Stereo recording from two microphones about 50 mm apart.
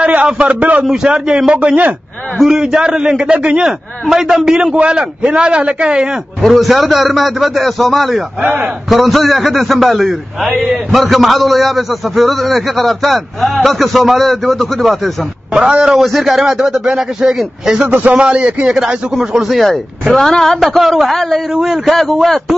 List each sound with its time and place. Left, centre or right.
0.0 s a man's voice: right
2.4 s speech: centre
4.1 s speech: centre
4.7 s a man's voice: right
6.4 s a man's voice: centre
15.6 s speech: centre
17.8 s a man's voice: right
18.2 s a man's voice: right
19.4 s a man's voice: centre